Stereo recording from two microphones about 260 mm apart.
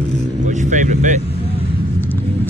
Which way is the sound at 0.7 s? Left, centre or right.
Right.